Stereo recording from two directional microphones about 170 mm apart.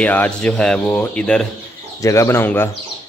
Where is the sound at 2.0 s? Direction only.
15° left (ahead or behind).